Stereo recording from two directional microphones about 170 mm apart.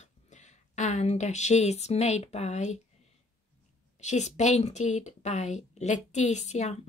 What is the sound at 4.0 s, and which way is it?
A woman's voice, 45° left (ahead or behind).